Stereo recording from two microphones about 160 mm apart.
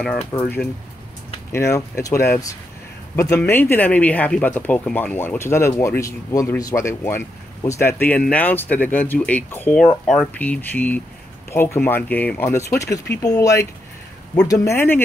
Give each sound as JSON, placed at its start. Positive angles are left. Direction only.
{"t": 0.3, "sound": "speech", "side_deg": 10}